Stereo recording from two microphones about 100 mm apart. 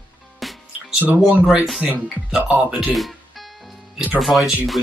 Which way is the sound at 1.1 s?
10° right (ahead or behind).